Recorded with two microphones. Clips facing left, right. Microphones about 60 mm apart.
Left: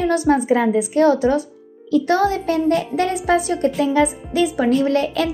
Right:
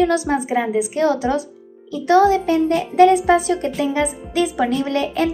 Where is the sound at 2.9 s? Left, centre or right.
Right.